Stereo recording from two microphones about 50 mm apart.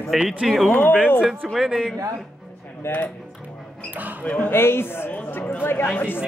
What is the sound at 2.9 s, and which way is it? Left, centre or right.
Speech, left.